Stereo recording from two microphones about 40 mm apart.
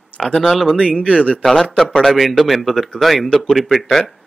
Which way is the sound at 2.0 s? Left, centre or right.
Centre.